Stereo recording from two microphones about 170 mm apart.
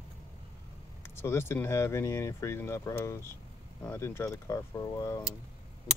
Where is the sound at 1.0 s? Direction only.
15° left (ahead or behind).